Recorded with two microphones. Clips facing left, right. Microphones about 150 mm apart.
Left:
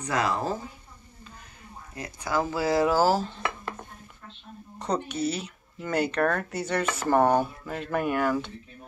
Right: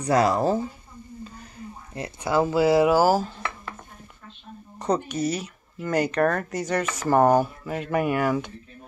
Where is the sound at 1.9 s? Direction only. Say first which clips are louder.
Right 5 dB; 25° right (ahead or behind).